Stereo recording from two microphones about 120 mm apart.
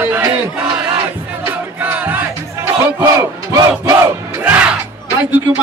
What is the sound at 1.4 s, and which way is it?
Music, 15° right (ahead or behind).